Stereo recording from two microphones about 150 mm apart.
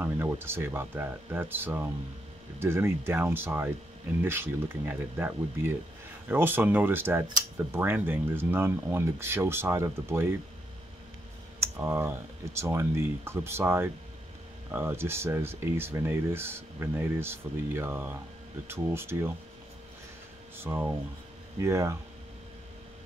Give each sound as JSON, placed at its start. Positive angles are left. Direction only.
{"t": 0.0, "sound": "speech", "side_deg": -15}
{"t": 11.6, "sound": "speech", "side_deg": -15}
{"t": 20.5, "sound": "speech", "side_deg": -15}